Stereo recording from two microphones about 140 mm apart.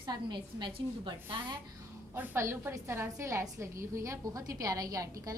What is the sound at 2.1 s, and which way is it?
A woman's voice, 15° right (ahead or behind).